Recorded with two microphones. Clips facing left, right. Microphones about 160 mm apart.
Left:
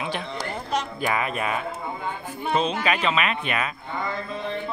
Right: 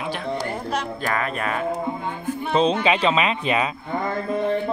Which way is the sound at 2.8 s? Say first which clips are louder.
Right 4 dB; 30° right (ahead or behind).